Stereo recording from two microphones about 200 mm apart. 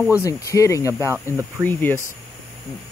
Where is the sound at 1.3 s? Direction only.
15° right (ahead or behind).